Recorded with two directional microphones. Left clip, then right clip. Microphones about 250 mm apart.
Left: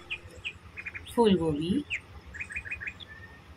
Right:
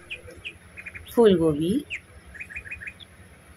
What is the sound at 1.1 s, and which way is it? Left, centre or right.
Speech, centre.